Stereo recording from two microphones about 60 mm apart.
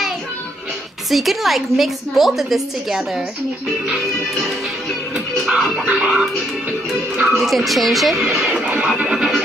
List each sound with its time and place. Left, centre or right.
1.1 s a woman's voice: centre
5.5 s music: centre
7.2 s a woman's voice: centre
8.5 s music: right